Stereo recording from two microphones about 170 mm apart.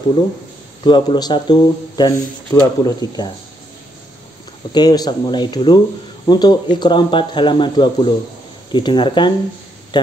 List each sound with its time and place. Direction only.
0.8 s speech: 25° left (ahead or behind)
4.7 s speech: 25° left (ahead or behind)